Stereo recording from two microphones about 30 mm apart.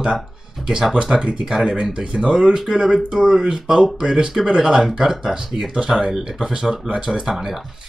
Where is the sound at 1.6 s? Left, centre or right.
Right.